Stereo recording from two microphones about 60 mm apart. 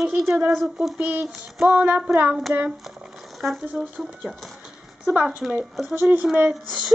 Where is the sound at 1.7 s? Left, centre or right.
Right.